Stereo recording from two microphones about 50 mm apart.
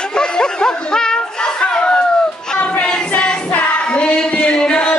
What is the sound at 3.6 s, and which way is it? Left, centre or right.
Music, left.